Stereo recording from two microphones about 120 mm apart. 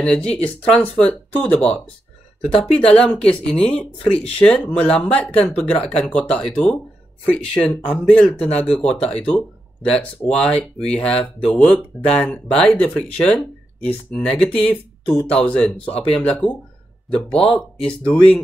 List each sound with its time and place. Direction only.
0.0 s speech: 10° left (ahead or behind)
2.4 s speech: 55° left (ahead or behind)
2.9 s speech: 10° left (ahead or behind)